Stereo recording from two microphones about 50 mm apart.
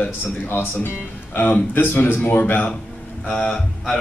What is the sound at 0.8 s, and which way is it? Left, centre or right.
Speech, left.